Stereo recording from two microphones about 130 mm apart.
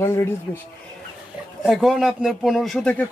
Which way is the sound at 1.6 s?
Centre (ahead or behind).